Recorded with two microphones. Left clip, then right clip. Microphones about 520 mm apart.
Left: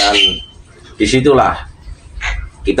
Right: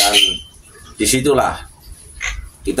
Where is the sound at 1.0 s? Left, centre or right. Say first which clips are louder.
Left 4 dB; right.